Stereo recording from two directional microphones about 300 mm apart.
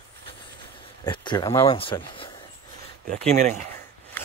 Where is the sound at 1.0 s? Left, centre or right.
Centre.